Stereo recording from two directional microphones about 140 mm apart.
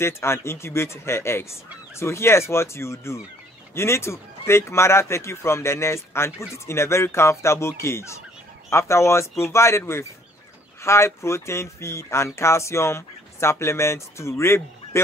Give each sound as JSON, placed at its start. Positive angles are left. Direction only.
{"t": 0.0, "sound": "speech", "side_deg": 20}